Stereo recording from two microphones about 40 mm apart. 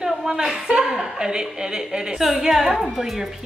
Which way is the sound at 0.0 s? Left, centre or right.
Centre.